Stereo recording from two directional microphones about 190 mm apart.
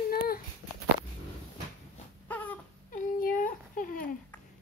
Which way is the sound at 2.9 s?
45° left (ahead or behind).